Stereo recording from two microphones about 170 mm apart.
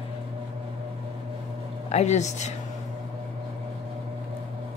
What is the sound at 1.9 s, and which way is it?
Speech, 40° left (ahead or behind).